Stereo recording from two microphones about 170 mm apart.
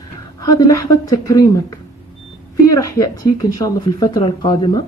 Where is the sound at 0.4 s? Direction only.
20° left (ahead or behind).